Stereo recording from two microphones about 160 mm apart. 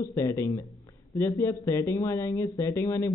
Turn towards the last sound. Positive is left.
turn(degrees=20)  # may be behind; listen again after turning